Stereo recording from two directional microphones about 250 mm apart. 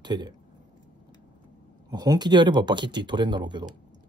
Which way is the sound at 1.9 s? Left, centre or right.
Centre.